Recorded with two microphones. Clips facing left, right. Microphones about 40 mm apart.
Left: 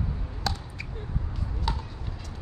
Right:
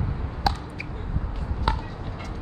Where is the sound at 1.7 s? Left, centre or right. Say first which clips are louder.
Right 6 dB; right.